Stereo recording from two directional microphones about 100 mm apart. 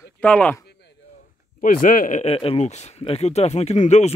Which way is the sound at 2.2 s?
80° left.